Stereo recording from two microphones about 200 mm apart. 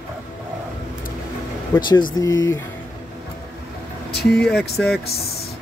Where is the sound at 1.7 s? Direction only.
10° left (ahead or behind).